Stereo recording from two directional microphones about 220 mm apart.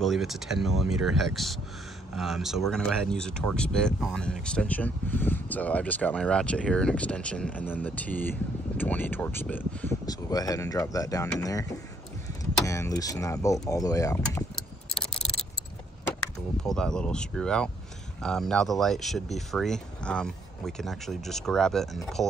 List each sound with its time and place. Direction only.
0.0 s speech: centre (ahead or behind); by 11.6 s 15° left (ahead or behind)
12.6 s speech: 15° left (ahead or behind)
16.3 s speech: 5° left (ahead or behind)